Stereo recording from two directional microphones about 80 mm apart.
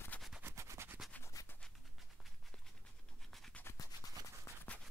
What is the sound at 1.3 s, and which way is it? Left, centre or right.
Scratch, left.